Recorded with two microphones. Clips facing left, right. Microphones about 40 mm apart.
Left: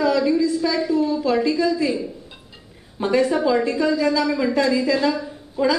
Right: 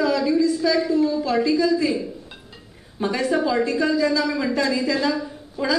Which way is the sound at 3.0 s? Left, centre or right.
Centre.